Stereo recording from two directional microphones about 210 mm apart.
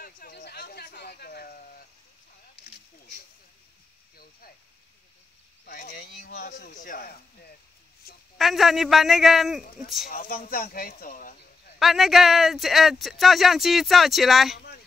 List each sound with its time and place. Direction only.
0.0 s a sound: 45° left (ahead or behind)
5.7 s speech: 45° left (ahead or behind)
8.4 s speech: centre (ahead or behind)
10.0 s speech: 40° left (ahead or behind)
11.8 s speech: centre (ahead or behind)